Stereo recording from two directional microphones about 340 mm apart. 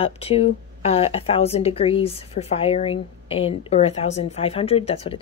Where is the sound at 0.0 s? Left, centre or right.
Centre.